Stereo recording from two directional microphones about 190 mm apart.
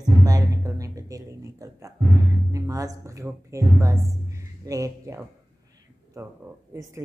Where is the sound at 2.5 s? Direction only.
15° right (ahead or behind).